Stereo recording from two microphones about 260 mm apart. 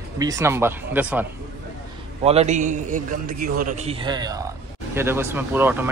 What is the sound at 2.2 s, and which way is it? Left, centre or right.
A man's voice, right.